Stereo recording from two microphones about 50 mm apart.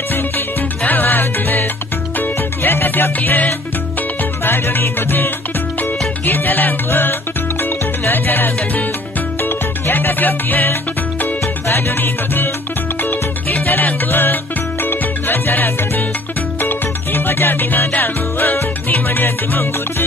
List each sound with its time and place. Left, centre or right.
0.1 s music: left
11.4 s music: left
13.0 s music: left